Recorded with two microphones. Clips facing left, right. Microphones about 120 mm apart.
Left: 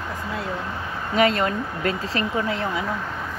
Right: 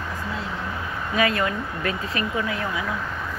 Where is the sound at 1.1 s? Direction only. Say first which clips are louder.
Left 3 dB; 30° left (ahead or behind).